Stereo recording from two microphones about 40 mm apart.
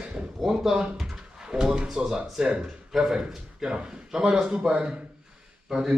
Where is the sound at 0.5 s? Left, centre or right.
Centre.